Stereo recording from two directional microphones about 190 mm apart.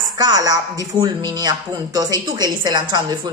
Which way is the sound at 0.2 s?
20° right (ahead or behind).